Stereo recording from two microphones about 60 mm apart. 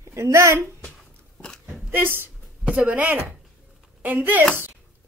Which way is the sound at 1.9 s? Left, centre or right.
Right.